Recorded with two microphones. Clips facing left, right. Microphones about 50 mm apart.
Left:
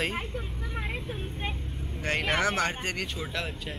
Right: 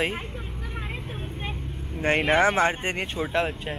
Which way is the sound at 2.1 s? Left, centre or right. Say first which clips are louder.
Right 6 dB; centre.